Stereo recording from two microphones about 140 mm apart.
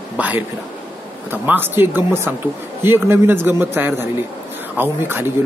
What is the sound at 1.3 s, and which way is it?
Speech, 15° right (ahead or behind).